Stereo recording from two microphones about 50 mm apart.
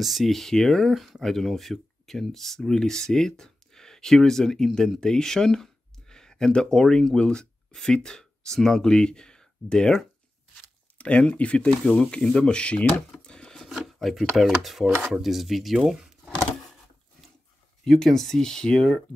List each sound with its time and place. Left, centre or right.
0.0 s speech: centre
11.0 s speech: left
13.2 s a sound: centre
13.7 s a sound: centre
14.6 s speech: centre
17.8 s speech: centre